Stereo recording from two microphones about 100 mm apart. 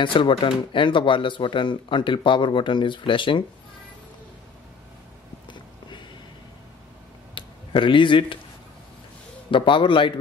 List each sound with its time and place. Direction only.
0.0 s speech: 60° left (ahead or behind)
5.5 s a sound: 50° left (ahead or behind)
7.3 s speech: 55° left (ahead or behind)
9.5 s speech: 55° left (ahead or behind)